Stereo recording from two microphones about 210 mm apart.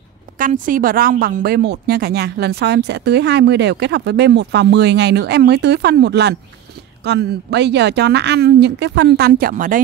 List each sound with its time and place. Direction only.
0.4 s speech: 40° right (ahead or behind)